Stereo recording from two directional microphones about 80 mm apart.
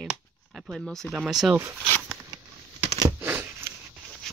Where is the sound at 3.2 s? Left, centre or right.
Right.